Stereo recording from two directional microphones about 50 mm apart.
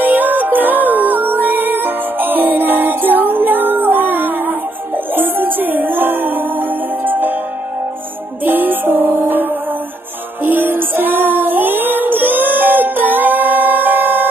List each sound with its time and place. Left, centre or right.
0.0 s music: right
8.5 s music: right